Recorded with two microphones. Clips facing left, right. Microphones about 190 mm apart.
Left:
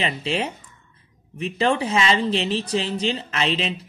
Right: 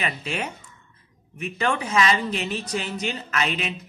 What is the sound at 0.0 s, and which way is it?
Speech, 30° left (ahead or behind).